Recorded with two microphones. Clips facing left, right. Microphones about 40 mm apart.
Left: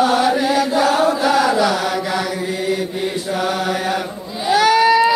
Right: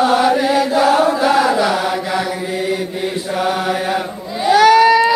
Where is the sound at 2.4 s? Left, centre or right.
Centre.